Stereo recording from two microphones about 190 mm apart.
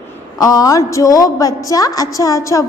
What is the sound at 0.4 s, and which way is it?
A woman's voice, 20° left (ahead or behind).